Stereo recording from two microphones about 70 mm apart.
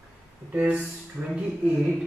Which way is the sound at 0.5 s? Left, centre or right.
Centre.